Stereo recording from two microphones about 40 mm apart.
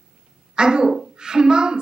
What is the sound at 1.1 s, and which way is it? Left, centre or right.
Speech, centre.